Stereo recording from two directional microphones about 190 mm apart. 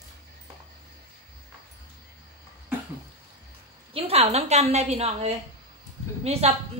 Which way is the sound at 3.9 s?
30° right (ahead or behind).